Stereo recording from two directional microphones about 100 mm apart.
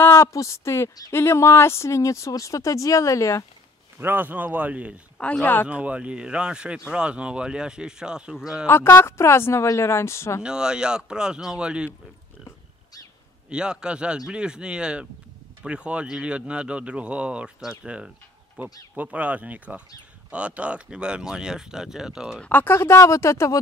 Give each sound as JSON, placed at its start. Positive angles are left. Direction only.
{"t": 0.0, "sound": "speech", "side_deg": 30}
{"t": 4.0, "sound": "speech", "side_deg": -20}
{"t": 5.2, "sound": "speech", "side_deg": 15}
{"t": 5.7, "sound": "speech", "side_deg": -15}
{"t": 8.6, "sound": "speech", "side_deg": 25}
{"t": 10.4, "sound": "speech", "side_deg": -10}
{"t": 13.5, "sound": "speech", "side_deg": -10}
{"t": 22.4, "sound": "speech", "side_deg": 20}